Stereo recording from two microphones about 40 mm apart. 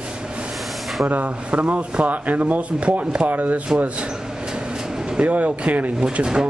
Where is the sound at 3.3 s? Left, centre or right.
Right.